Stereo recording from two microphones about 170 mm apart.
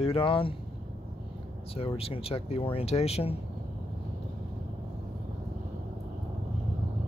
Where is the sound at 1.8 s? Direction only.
35° left (ahead or behind).